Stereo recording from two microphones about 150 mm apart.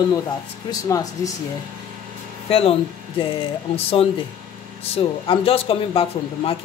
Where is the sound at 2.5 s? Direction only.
40° left (ahead or behind).